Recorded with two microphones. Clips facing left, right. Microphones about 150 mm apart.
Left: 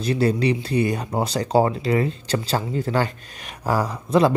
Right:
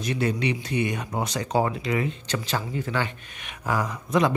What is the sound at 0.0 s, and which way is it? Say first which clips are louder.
Speech: left 5 dB; 35° left (ahead or behind).